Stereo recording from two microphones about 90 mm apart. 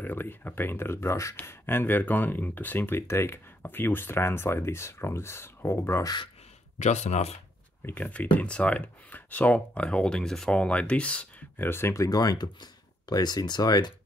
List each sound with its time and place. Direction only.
0.0 s speech: 20° left (ahead or behind)
7.8 s speech: 20° left (ahead or behind)
11.5 s speech: 25° left (ahead or behind); by 13.9 s 50° left (ahead or behind)